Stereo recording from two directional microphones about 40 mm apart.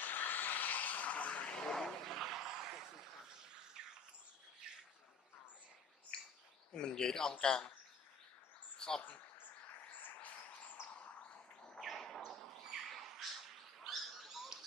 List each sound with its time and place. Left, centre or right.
0.0 s a sound: left
1.5 s vehicle: centre
1.9 s a sound: centre
3.8 s bird: centre
6.1 s bird: left
6.7 s speech: centre
8.7 s bird: centre
9.9 s bird: left
11.8 s bird: centre
12.3 s a sound: centre
12.6 s dog: centre